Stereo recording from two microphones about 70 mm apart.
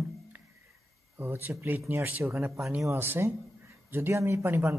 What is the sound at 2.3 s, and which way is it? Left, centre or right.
A man's voice, right.